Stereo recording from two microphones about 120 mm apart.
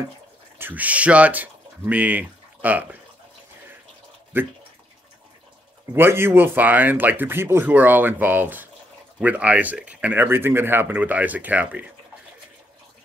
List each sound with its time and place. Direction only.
0.6 s speech: 15° right (ahead or behind)
4.3 s speech: 20° right (ahead or behind)
5.9 s speech: 20° right (ahead or behind)